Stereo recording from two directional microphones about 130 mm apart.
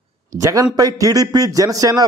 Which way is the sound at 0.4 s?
25° right (ahead or behind).